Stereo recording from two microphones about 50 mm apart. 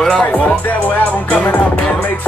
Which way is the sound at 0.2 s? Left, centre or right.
Left.